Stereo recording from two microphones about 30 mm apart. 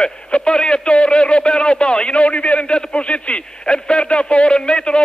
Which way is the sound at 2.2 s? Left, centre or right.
Left.